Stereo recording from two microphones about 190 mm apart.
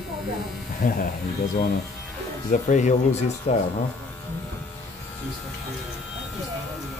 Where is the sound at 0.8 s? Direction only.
45° left (ahead or behind).